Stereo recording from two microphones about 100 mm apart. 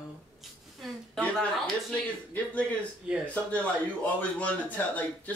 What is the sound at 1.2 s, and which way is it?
Speech, 10° left (ahead or behind).